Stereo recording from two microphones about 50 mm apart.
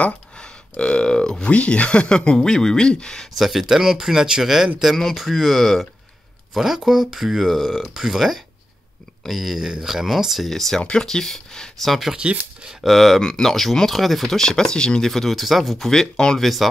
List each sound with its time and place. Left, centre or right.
0.0 s a sound: centre
1.5 s speech: left
3.3 s speech: centre
10.8 s speech: centre
11.8 s speech: centre
12.2 s speech: right
12.8 s speech: centre
13.2 s speech: centre
15.0 s speech: centre
16.3 s speech: centre